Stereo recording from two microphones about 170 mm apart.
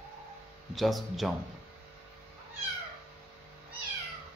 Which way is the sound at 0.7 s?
Centre (ahead or behind).